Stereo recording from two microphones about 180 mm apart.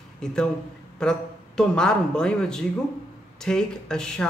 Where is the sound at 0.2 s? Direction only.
5° left (ahead or behind).